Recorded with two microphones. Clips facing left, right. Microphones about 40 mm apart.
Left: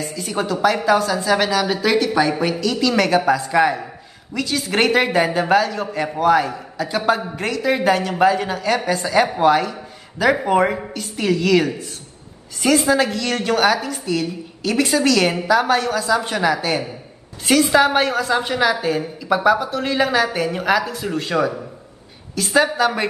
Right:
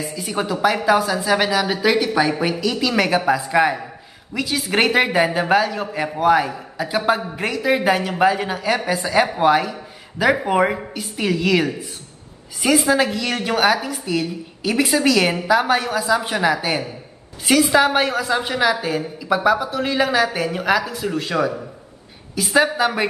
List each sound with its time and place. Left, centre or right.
0.0 s a man's voice: centre